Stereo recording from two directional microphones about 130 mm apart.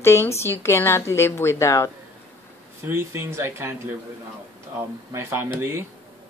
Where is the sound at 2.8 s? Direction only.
20° right (ahead or behind).